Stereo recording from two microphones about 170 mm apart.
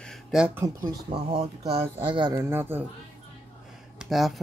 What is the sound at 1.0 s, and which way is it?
Speech, 30° right (ahead or behind).